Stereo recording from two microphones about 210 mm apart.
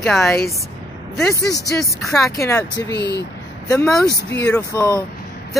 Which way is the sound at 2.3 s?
15° left (ahead or behind).